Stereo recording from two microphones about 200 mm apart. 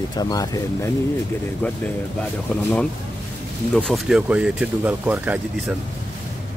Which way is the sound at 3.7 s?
Centre (ahead or behind).